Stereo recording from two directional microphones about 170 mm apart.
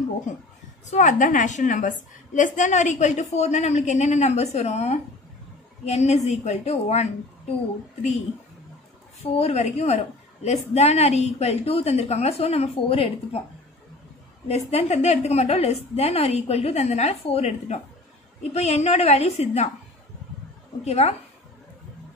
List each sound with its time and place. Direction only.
0.8 s a woman's voice: 45° left (ahead or behind)
9.2 s a woman's voice: 35° left (ahead or behind)
14.5 s a woman's voice: 40° left (ahead or behind)
20.8 s a woman's voice: 40° left (ahead or behind)